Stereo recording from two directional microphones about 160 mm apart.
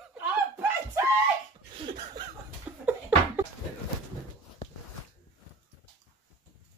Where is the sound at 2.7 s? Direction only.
10° right (ahead or behind).